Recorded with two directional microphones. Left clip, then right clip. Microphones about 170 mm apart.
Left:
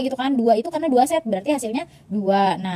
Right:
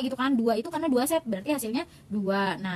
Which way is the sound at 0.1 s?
15° left (ahead or behind).